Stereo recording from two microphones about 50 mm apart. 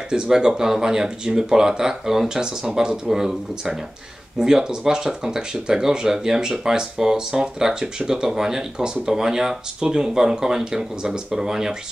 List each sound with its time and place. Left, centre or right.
0.1 s speech: centre